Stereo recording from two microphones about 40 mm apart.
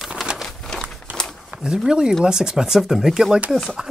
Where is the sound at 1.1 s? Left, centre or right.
Right.